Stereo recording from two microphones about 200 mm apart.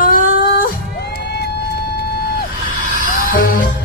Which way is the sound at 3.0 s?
45° left (ahead or behind).